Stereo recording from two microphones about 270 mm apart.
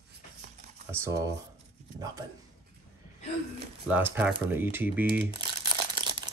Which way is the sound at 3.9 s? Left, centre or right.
Centre.